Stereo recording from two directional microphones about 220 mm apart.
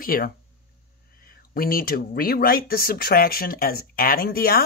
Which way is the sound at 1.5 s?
40° left (ahead or behind).